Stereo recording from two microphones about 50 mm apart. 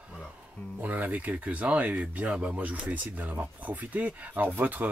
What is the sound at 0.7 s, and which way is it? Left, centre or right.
Speech, right.